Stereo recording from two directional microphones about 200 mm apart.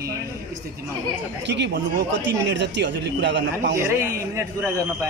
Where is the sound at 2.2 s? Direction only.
60° right (ahead or behind).